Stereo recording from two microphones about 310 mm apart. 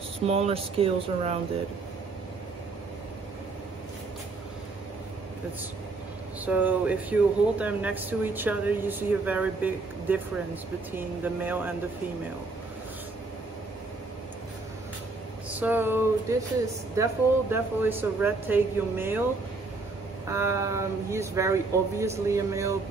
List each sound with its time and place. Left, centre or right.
0.3 s speech: centre
6.4 s speech: centre
15.5 s speech: centre
20.2 s speech: centre